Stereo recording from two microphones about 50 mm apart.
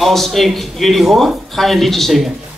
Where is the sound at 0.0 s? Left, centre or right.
Centre.